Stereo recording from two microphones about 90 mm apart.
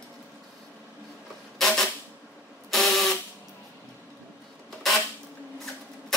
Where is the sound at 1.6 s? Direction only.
Centre (ahead or behind).